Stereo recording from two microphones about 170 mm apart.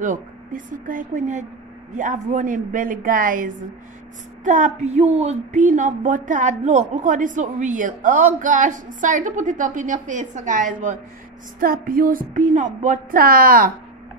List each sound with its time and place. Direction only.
0.0 s a woman's voice: 50° right (ahead or behind)